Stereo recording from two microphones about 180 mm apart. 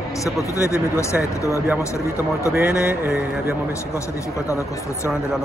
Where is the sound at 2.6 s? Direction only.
65° left (ahead or behind).